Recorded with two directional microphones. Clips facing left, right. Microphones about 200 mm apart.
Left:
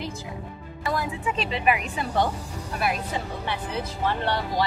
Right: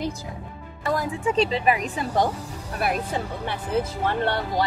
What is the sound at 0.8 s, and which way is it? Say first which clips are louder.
Speech: right 3 dB; 35° right (ahead or behind).